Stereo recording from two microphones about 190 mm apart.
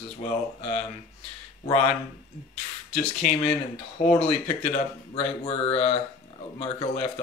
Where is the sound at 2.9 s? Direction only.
35° left (ahead or behind).